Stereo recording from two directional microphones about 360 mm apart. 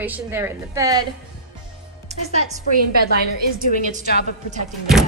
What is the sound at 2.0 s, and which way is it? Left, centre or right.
Speech, centre.